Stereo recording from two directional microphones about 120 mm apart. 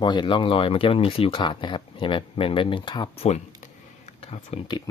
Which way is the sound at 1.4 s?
40° left (ahead or behind).